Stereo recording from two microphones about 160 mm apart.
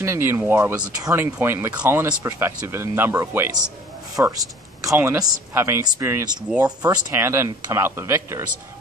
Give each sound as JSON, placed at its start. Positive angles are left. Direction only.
{"t": 0.0, "sound": "speech", "side_deg": -15}